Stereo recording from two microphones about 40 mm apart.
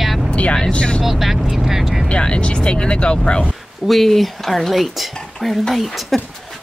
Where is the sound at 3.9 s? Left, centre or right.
Centre.